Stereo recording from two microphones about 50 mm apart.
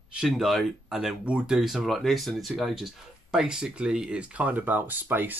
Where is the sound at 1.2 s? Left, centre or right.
Right.